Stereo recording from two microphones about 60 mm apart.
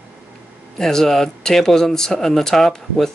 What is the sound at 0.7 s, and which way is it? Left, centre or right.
Speech, centre.